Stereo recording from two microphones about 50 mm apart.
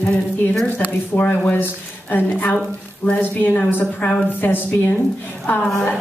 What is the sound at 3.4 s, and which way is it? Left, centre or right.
Speech, left.